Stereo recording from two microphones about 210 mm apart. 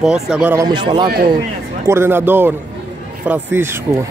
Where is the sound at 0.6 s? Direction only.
20° right (ahead or behind).